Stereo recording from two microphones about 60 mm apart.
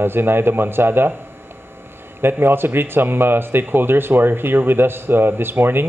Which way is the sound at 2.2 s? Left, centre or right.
Right.